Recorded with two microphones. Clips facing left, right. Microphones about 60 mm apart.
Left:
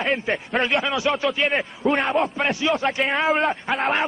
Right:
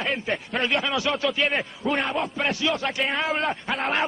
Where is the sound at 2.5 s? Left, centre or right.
Left.